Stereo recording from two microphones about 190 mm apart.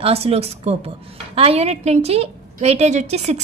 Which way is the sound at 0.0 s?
30° right (ahead or behind).